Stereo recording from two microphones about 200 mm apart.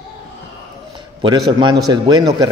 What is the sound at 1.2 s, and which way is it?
Speech, 20° right (ahead or behind).